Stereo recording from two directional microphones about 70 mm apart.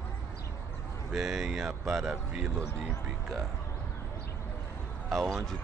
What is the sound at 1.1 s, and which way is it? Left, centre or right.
Speech, centre.